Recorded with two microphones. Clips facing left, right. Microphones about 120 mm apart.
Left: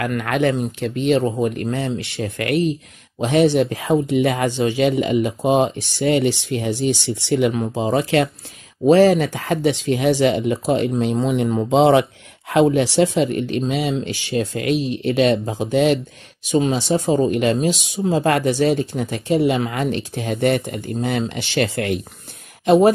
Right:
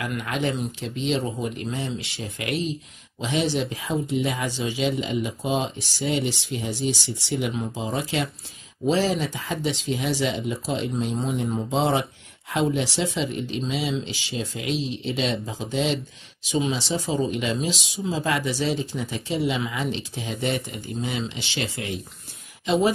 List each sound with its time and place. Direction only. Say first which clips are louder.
0.0 s speech: left 7 dB; 60° left (ahead or behind)